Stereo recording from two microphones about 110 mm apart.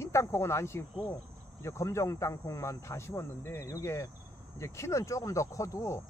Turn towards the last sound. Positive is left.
turn(degrees=30)  # may be behind; listen again after turning